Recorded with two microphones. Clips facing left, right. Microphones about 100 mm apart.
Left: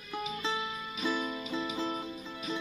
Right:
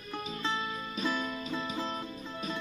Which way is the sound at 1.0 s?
10° left (ahead or behind).